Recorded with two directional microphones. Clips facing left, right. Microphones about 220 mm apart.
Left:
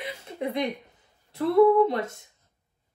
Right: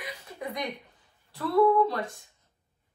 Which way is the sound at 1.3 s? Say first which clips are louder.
Left 4 dB; 20° left (ahead or behind).